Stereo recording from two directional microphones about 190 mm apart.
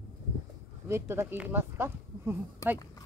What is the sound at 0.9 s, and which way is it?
Speech, 10° right (ahead or behind).